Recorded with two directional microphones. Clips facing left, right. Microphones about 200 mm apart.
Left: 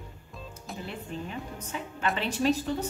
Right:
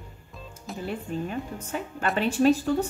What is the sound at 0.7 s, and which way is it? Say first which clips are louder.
Speech: right 4 dB; centre (ahead or behind).